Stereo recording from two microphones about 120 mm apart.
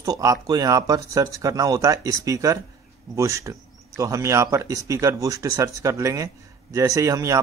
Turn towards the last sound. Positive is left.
turn(degrees=-25)  # may be behind; listen again after turning